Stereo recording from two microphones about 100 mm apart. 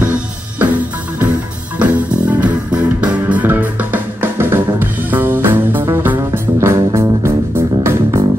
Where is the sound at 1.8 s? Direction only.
10° right (ahead or behind); by 8.2 s 30° right (ahead or behind).